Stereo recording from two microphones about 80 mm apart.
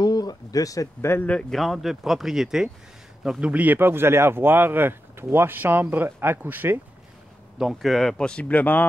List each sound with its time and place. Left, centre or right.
0.0 s a sound: left
1.5 s speech: centre; by 6.8 s right
7.5 s speech: centre; by 8.8 s left